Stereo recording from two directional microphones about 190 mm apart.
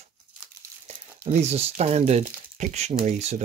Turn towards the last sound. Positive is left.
turn(degrees=-35)  # may be behind; listen again after turning